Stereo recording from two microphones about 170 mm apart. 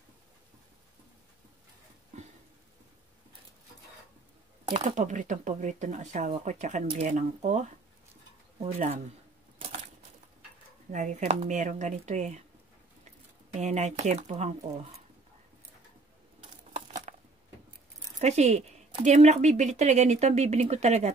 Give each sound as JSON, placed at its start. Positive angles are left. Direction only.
{"t": 2.1, "sound": "a sound", "side_deg": -45}
{"t": 4.6, "sound": "speech", "side_deg": -40}
{"t": 10.9, "sound": "speech", "side_deg": -45}
{"t": 13.6, "sound": "speech", "side_deg": -40}
{"t": 16.7, "sound": "a sound", "side_deg": -45}
{"t": 18.2, "sound": "speech", "side_deg": -40}